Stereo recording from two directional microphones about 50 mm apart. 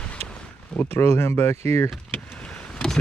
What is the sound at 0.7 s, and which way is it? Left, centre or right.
Speech, left.